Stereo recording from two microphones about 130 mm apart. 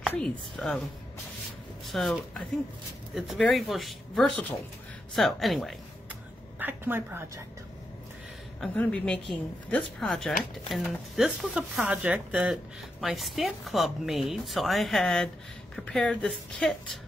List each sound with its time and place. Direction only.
0.1 s a woman's voice: 5° left (ahead or behind)
1.9 s a woman's voice: centre (ahead or behind)
6.6 s a woman's voice: 15° right (ahead or behind)
8.5 s a woman's voice: 10° left (ahead or behind)